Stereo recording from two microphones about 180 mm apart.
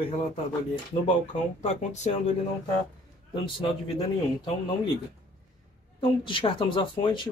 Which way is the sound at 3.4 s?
30° left (ahead or behind).